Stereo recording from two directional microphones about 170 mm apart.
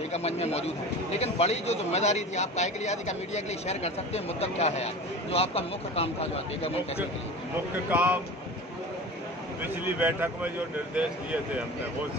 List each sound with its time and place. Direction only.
0.1 s a man's voice: 40° left (ahead or behind)
7.9 s speech: 10° right (ahead or behind)
9.6 s speech: 10° right (ahead or behind)